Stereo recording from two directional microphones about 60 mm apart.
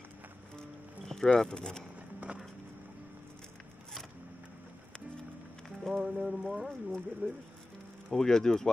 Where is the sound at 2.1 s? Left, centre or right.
Right.